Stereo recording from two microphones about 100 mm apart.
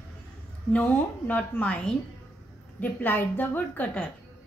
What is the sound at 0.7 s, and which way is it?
A woman's voice, 20° left (ahead or behind).